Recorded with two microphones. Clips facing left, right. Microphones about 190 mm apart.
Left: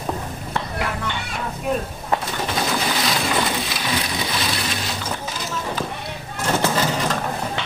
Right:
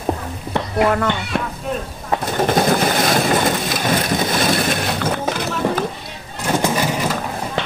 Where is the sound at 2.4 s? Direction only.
50° right (ahead or behind).